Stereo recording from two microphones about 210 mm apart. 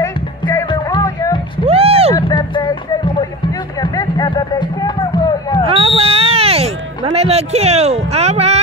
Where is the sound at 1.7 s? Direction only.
30° right (ahead or behind).